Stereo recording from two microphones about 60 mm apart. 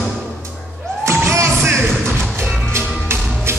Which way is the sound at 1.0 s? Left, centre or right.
Right.